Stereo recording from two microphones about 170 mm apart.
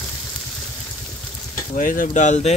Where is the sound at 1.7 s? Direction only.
55° left (ahead or behind).